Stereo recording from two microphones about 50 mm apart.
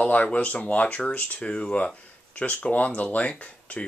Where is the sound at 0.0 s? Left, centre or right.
Left.